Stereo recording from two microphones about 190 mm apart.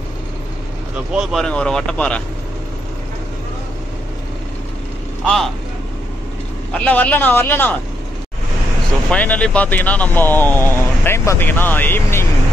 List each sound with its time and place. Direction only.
0.9 s speech: 5° right (ahead or behind)
5.2 s speech: centre (ahead or behind)
6.7 s speech: 5° left (ahead or behind)
9.1 s speech: 5° left (ahead or behind)